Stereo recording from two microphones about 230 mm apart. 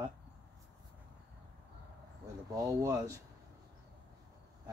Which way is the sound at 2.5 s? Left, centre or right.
Centre.